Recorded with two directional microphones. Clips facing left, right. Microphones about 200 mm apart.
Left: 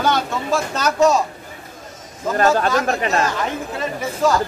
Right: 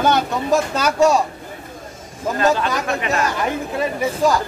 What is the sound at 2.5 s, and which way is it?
Speech, 40° left (ahead or behind).